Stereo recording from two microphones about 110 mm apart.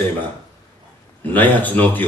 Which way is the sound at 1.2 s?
15° left (ahead or behind).